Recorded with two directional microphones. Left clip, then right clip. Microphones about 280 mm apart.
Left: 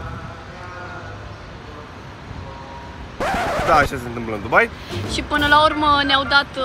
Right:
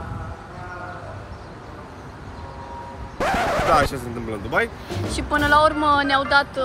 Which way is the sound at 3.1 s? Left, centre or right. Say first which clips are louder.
Even; centre.